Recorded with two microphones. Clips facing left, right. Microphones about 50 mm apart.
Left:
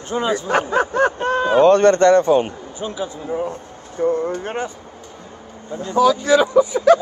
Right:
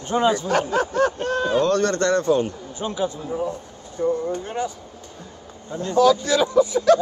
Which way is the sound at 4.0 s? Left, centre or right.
Left.